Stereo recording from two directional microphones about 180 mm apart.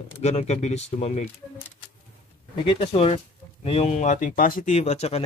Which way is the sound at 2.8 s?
35° left (ahead or behind).